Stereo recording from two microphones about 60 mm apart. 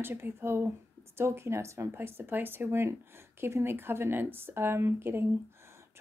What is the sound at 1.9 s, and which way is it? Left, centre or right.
A woman's voice, right.